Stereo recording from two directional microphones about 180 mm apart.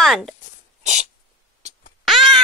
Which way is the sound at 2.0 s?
Centre (ahead or behind).